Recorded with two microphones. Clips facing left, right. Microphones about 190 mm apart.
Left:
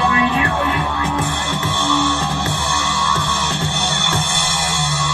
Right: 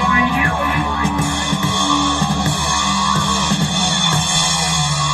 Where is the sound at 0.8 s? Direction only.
10° right (ahead or behind).